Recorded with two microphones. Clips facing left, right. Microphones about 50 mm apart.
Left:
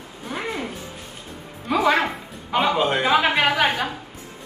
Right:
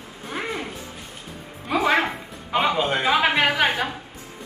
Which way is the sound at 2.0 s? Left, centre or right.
Centre.